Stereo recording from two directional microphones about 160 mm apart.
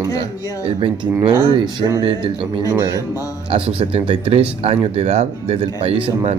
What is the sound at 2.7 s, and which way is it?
Speech, 20° right (ahead or behind).